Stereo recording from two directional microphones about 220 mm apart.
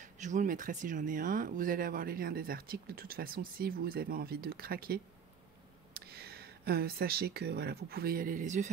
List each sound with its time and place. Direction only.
0.0 s speech: 35° right (ahead or behind)